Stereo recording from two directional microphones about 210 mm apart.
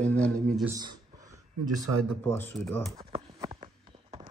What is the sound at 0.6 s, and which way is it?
Speech, 15° right (ahead or behind).